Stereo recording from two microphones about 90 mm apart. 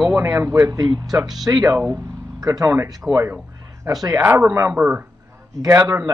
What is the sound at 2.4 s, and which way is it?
Speech, 45° right (ahead or behind).